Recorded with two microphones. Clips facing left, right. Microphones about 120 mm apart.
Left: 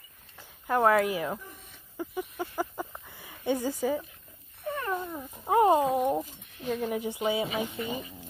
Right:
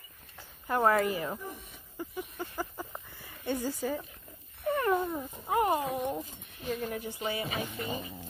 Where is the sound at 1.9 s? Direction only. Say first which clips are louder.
Left 4 dB; 10° left (ahead or behind).